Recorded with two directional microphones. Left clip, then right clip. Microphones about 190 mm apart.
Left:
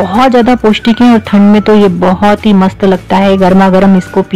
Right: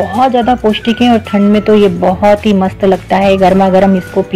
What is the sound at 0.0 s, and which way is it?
Speech, 35° left (ahead or behind).